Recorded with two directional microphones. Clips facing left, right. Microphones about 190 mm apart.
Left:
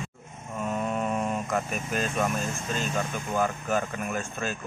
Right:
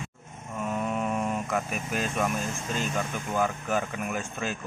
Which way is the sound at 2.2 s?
15° right (ahead or behind).